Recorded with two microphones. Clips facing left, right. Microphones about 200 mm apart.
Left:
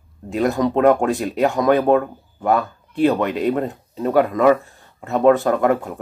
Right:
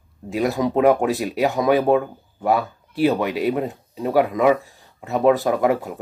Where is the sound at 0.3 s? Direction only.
Centre (ahead or behind).